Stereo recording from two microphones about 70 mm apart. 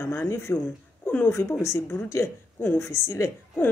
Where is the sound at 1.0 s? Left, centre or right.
Left.